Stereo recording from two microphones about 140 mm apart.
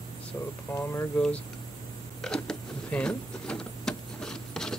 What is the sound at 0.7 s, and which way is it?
Speech, 20° left (ahead or behind).